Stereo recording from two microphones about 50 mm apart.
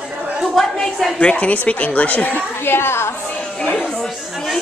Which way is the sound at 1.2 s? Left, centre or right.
Left.